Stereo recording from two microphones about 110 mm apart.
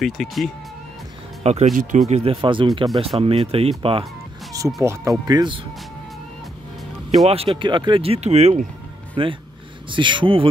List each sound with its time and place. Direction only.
0.0 s speech: centre (ahead or behind)
1.4 s speech: 85° right
2.4 s speech: 45° right (ahead or behind)
3.2 s speech: 60° right (ahead or behind)
4.5 s music: 30° right (ahead or behind)
4.8 s speech: 30° right (ahead or behind)
7.2 s speech: 55° right (ahead or behind); by 8.5 s 80° right
9.1 s speech: 50° right (ahead or behind)